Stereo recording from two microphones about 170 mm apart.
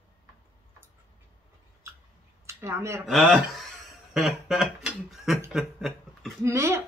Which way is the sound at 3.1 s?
Centre (ahead or behind).